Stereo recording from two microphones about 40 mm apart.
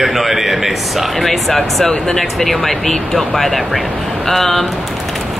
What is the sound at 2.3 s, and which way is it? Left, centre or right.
Speech, centre.